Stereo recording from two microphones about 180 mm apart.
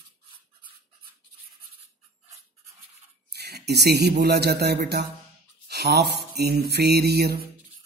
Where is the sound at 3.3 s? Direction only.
65° right (ahead or behind).